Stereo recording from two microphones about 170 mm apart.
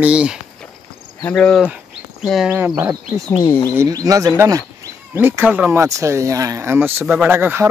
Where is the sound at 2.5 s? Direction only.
10° right (ahead or behind).